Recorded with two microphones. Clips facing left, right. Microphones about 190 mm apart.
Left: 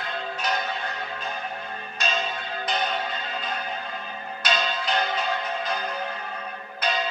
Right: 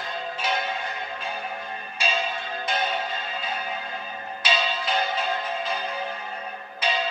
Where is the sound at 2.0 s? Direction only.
10° right (ahead or behind).